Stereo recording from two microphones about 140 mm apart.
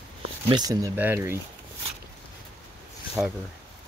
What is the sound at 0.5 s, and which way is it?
Speech, 30° right (ahead or behind).